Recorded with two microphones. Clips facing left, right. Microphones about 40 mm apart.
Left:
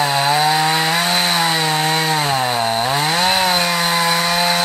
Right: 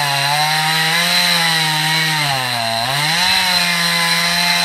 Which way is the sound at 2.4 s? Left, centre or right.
Right.